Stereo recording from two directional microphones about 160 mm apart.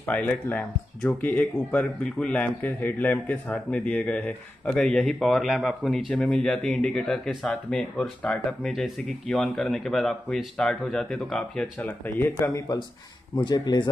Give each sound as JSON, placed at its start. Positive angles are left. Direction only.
{"t": 0.1, "sound": "speech", "side_deg": 10}